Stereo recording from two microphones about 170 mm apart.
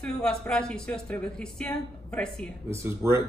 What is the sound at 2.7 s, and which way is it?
Speech, 15° right (ahead or behind).